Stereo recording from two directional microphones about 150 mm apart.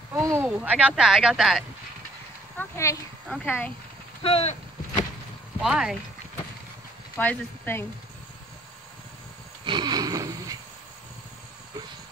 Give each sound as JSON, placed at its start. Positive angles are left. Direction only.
{"t": 0.1, "sound": "a sound", "side_deg": -15}
{"t": 0.5, "sound": "speech", "side_deg": -10}
{"t": 2.5, "sound": "speech", "side_deg": 15}
{"t": 4.2, "sound": "speech", "side_deg": 40}
{"t": 5.6, "sound": "speech", "side_deg": -5}
{"t": 7.2, "sound": "speech", "side_deg": 10}
{"t": 9.7, "sound": "a sound", "side_deg": -30}